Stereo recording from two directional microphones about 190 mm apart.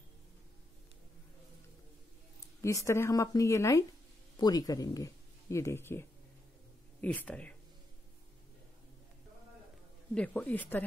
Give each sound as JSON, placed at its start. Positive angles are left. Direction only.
{"t": 2.6, "sound": "a woman's voice", "side_deg": 15}
{"t": 10.1, "sound": "a woman's voice", "side_deg": 5}